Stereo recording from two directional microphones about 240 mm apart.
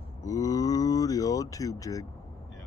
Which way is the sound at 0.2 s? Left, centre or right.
Centre.